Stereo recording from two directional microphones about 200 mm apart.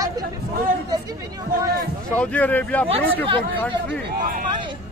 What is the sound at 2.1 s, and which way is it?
Speech, 5° left (ahead or behind).